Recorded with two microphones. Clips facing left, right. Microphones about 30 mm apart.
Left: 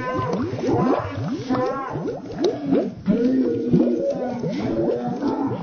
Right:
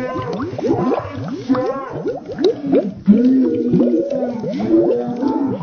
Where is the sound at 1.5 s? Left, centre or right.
Centre.